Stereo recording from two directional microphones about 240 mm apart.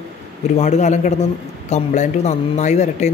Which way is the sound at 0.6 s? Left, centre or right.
Left.